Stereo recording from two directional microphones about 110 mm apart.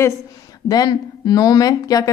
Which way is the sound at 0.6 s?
35° left (ahead or behind).